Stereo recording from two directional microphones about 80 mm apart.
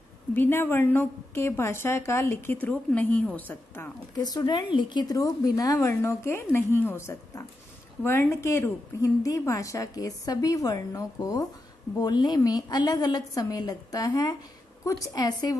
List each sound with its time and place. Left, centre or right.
0.3 s a woman's voice: left
4.1 s a woman's voice: left
4.7 s speech: left
5.1 s a woman's voice: left
5.9 s a woman's voice: left
12.0 s a woman's voice: left